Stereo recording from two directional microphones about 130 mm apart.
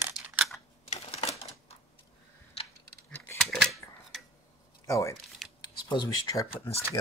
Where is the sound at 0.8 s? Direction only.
50° left (ahead or behind).